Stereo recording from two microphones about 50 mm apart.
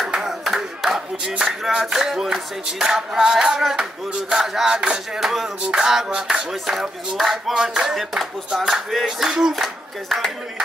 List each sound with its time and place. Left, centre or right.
0.0 s speech: centre
4.1 s clapping: centre
10.0 s speech: centre